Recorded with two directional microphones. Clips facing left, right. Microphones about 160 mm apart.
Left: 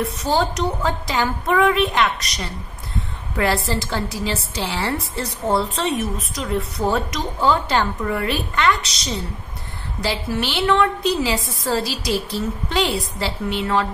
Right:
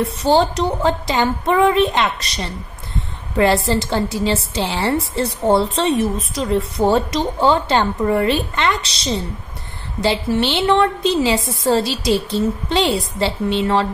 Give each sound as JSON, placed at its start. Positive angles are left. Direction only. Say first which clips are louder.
{"t": 0.0, "sound": "a woman's voice", "louder": "right 5 dB", "side_deg": -30}